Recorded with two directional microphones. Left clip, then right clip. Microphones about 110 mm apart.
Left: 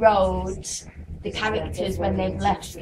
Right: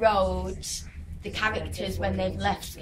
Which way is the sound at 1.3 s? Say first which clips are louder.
Left 2 dB; 25° right (ahead or behind).